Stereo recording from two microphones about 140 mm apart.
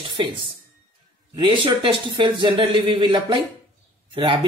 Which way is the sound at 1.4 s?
35° right (ahead or behind).